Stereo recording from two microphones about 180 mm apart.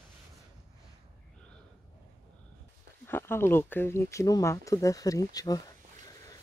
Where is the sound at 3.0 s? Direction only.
15° left (ahead or behind).